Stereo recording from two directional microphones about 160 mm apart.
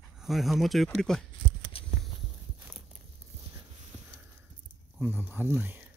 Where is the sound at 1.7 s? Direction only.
35° left (ahead or behind).